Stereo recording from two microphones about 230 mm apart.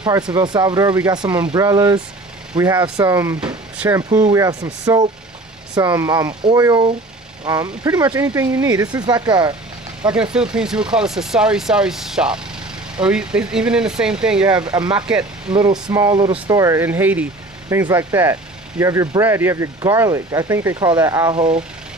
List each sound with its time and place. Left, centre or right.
0.3 s speech: centre
10.3 s speech: centre
14.5 s speech: centre